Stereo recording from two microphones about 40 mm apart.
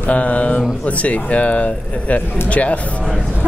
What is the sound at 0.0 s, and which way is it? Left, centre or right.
Speech, left.